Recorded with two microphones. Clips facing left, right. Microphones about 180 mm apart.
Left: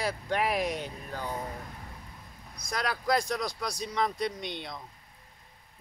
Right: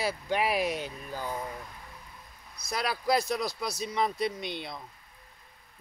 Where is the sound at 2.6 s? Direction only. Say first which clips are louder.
Right 1 dB; 10° right (ahead or behind).